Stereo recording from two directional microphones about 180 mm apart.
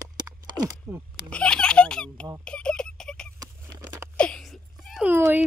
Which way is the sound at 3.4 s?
20° right (ahead or behind).